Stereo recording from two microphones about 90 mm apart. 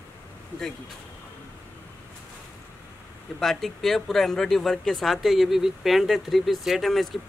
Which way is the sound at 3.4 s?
5° left (ahead or behind).